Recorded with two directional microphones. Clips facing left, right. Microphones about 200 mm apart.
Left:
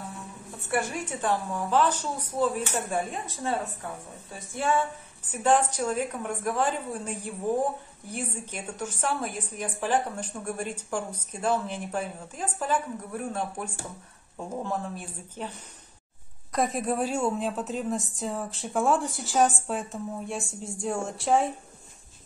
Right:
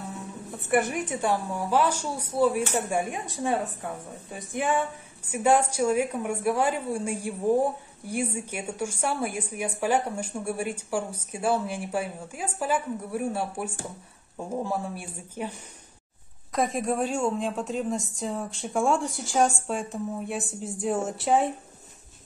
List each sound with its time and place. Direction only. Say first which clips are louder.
0.5 s a woman's voice: right 4 dB; 20° right (ahead or behind)
16.5 s a woman's voice: right 1 dB; centre (ahead or behind)